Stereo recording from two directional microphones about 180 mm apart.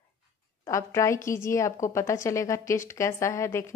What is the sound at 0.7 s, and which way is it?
A woman's voice, 15° left (ahead or behind).